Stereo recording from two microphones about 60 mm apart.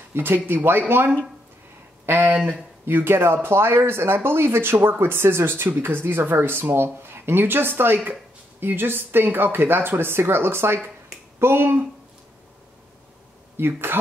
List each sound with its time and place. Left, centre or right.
0.1 s speech: right
2.0 s speech: right
2.9 s speech: right
13.6 s speech: right